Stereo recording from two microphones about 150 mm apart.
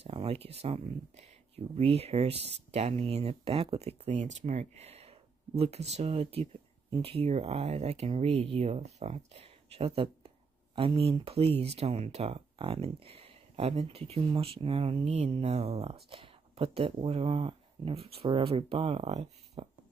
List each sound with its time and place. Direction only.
0.0 s speech: 40° right (ahead or behind)